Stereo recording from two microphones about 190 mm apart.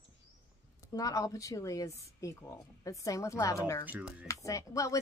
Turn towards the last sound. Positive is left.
turn(degrees=15)  # may be behind; listen again after turning